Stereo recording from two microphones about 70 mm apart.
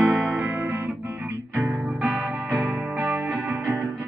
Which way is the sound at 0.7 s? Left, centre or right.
Right.